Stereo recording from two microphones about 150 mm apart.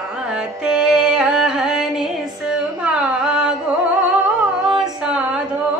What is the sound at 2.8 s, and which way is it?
Carnatic music, 5° right (ahead or behind).